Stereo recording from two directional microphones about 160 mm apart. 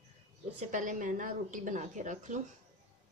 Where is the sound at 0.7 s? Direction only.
55° right (ahead or behind).